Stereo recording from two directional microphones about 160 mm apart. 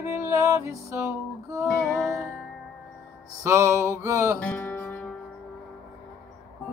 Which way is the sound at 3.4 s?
15° right (ahead or behind).